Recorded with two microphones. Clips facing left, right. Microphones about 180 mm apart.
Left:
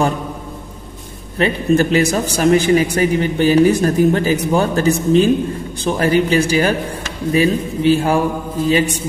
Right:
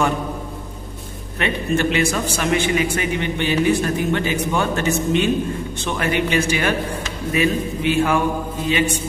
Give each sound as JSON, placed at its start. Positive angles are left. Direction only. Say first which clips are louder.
{"t": 1.4, "sound": "a man's voice", "louder": "left 6 dB", "side_deg": 35}